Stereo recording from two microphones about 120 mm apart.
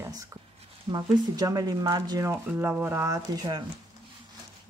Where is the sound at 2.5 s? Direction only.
15° right (ahead or behind).